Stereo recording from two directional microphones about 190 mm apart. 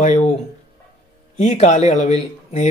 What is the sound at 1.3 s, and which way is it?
Speech, 40° left (ahead or behind).